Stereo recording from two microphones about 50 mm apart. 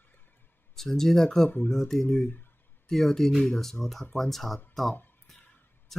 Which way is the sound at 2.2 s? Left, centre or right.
Left.